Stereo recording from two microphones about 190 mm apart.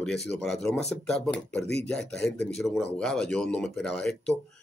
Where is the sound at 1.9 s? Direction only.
5° left (ahead or behind).